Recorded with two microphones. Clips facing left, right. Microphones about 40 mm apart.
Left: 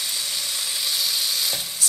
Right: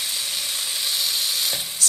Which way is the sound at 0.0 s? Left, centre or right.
Centre.